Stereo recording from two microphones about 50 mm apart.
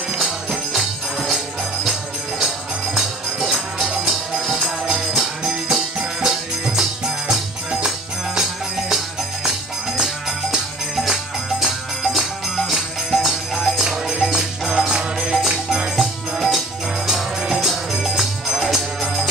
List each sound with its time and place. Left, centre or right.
0.1 s music: centre